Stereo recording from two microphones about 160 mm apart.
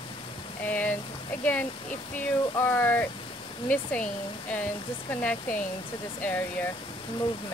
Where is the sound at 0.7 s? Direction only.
10° left (ahead or behind).